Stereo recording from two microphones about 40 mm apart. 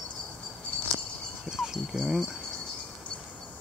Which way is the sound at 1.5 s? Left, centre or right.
Centre.